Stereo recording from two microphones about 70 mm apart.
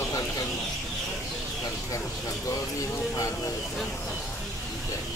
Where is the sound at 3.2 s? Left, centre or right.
Left.